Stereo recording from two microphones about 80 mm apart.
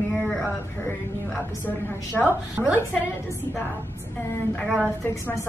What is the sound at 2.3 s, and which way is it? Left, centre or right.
Speech, centre.